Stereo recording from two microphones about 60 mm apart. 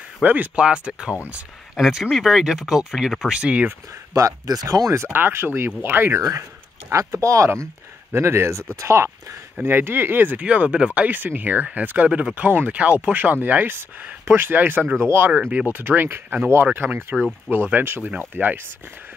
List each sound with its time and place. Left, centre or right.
0.2 s speech: right
0.6 s speech: centre
1.8 s speech: centre
3.3 s speech: centre
4.1 s speech: right
5.1 s speech: right
6.9 s speech: right
8.1 s speech: right
9.6 s speech: right
10.4 s speech: right